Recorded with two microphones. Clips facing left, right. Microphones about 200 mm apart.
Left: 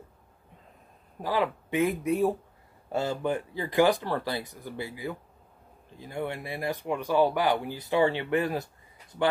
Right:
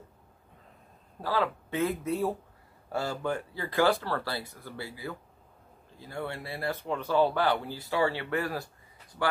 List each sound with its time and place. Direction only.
1.2 s speech: 15° left (ahead or behind)